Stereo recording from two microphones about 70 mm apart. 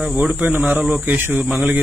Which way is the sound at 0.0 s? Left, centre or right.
Centre.